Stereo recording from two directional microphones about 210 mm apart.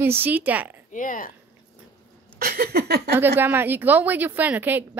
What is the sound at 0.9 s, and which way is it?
Speech, 40° left (ahead or behind).